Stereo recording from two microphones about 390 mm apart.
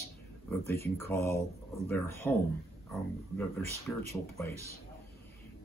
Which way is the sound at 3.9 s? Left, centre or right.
Centre.